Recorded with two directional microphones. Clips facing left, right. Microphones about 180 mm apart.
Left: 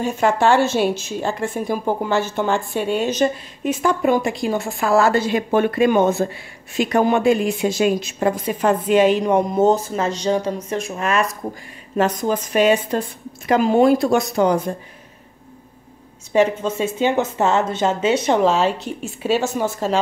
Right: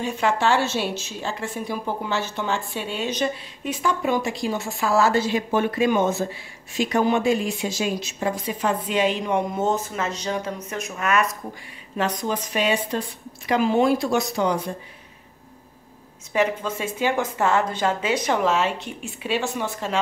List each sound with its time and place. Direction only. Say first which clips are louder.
0.0 s a woman's voice: left 5 dB; 50° left (ahead or behind); by 11.2 s 30° left (ahead or behind)
12.0 s a woman's voice: left 6 dB; 50° left (ahead or behind)
16.3 s a woman's voice: left 6 dB; 25° left (ahead or behind)